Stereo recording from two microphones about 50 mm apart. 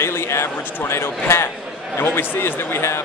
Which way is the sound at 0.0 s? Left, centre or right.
Left.